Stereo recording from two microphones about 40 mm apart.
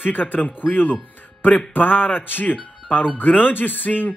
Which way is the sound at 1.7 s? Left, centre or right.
Left.